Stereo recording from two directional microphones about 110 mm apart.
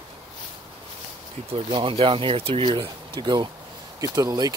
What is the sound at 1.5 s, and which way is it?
Speech, 55° right (ahead or behind).